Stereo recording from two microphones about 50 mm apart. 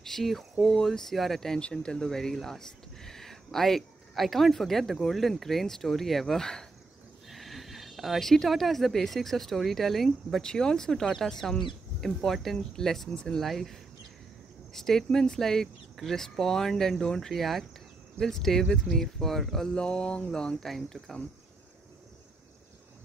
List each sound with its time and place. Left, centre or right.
0.0 s speech: centre
1.6 s speech: centre
7.2 s speech: centre
10.4 s speech: centre
13.1 s speech: centre
13.4 s speech: centre